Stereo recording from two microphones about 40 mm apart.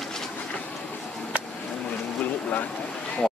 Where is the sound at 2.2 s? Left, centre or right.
Left.